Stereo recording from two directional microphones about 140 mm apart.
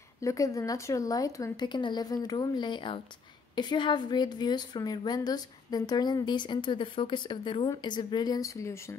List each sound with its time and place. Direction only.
0.2 s a woman's voice: 25° left (ahead or behind)